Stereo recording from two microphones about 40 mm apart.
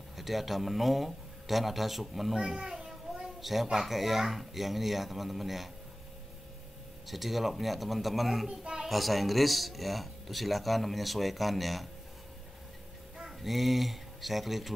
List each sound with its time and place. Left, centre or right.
0.2 s speech: centre
2.3 s a sound: centre
3.3 s a woman's voice: centre
7.1 s speech: centre
8.5 s a sound: centre
8.8 s speech: centre
13.4 s speech: centre